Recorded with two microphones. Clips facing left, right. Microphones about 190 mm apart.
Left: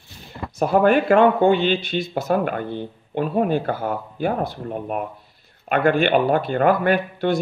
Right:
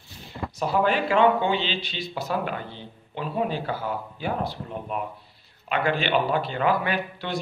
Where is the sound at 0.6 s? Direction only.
50° left (ahead or behind).